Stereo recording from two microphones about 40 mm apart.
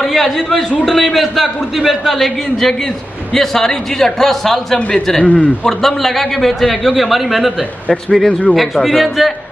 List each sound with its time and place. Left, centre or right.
0.0 s a man's voice: centre
5.2 s a man's voice: left
5.7 s a man's voice: centre
8.3 s speech: left
8.5 s a man's voice: centre